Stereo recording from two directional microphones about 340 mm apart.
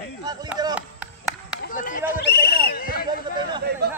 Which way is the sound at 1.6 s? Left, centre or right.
Left.